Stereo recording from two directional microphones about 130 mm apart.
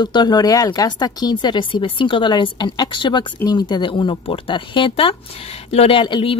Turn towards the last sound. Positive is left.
turn(degrees=40)  # may be behind; listen again after turning